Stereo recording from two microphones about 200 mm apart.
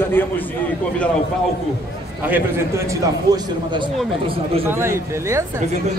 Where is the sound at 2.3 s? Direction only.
15° right (ahead or behind).